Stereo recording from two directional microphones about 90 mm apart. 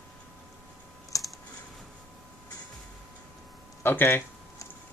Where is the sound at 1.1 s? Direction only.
40° left (ahead or behind).